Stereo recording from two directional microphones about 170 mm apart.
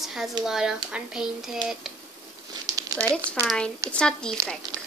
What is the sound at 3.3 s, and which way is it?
Speech, 5° left (ahead or behind).